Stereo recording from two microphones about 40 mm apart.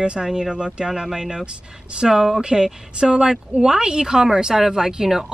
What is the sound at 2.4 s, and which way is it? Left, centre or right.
Speech, centre.